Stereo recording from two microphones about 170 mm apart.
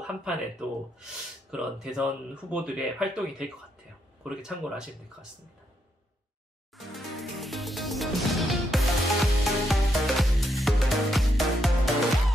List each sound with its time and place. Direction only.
0.0 s speech: 5° right (ahead or behind)
6.9 s music: centre (ahead or behind)